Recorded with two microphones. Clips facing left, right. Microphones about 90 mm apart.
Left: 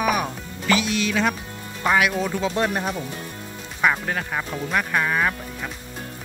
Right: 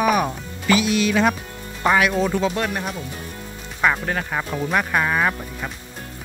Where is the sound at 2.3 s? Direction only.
10° right (ahead or behind).